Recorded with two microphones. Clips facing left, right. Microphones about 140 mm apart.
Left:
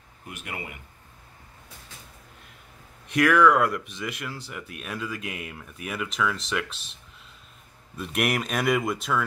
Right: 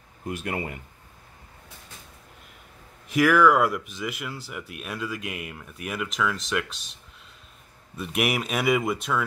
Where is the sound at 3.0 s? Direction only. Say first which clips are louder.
Right 1 dB; 5° right (ahead or behind).